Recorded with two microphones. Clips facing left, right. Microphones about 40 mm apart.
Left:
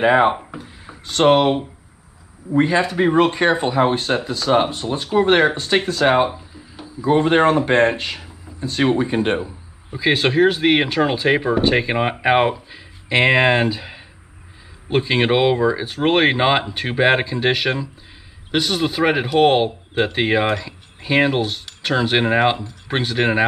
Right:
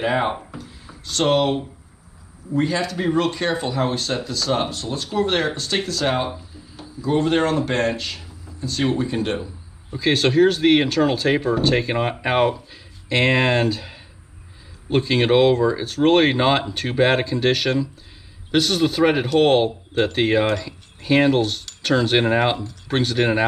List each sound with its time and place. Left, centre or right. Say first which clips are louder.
0.0 s speech: left 7 dB; left
9.8 s speech: left 1 dB; centre